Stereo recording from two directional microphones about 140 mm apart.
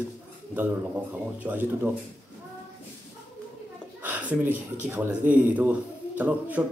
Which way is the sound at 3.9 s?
10° right (ahead or behind).